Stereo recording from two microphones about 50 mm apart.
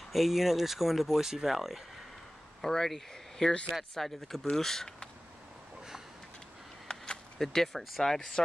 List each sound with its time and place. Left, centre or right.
0.1 s speech: centre
2.6 s speech: centre
6.9 s a sound: centre
7.4 s speech: centre